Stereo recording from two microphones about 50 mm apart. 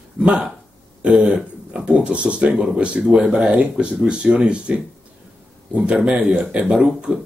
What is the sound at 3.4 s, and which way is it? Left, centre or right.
Speech, right.